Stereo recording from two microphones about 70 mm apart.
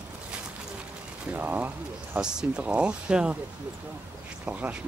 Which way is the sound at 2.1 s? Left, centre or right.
Centre.